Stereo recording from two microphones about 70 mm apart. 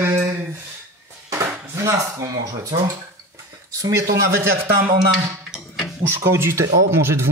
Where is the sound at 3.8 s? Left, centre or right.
Right.